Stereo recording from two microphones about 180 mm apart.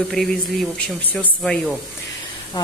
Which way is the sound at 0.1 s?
Centre (ahead or behind).